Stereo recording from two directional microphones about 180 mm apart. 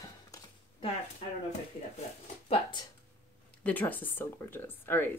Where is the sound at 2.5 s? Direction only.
25° left (ahead or behind).